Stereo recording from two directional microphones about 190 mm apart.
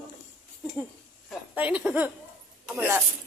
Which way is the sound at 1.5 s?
5° right (ahead or behind).